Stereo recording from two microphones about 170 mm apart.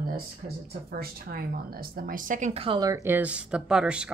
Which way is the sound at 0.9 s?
65° right (ahead or behind).